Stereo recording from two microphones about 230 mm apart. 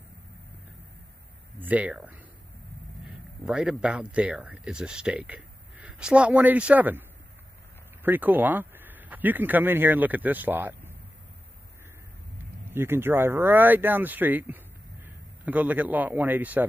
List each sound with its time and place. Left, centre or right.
1.6 s speech: centre
3.4 s speech: centre
12.7 s speech: centre